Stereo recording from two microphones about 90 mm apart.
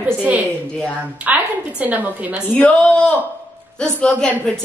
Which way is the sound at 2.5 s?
15° left (ahead or behind).